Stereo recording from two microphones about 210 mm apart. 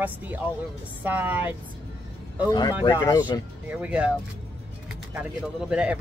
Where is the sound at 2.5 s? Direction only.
20° left (ahead or behind).